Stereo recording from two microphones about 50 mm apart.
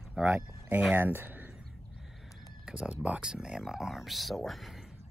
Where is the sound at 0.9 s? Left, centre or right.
Right.